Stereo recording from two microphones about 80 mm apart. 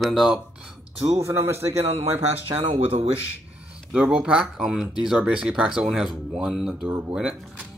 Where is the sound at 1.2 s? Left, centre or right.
Right.